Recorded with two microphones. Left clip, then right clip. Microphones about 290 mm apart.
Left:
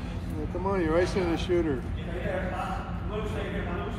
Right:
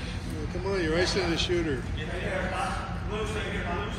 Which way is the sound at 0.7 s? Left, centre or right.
Centre.